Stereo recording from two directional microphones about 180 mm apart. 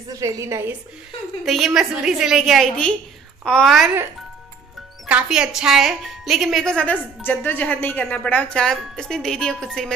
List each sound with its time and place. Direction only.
0.1 s a woman's voice: 15° right (ahead or behind)
1.4 s speech: centre (ahead or behind)
5.0 s speech: 5° right (ahead or behind)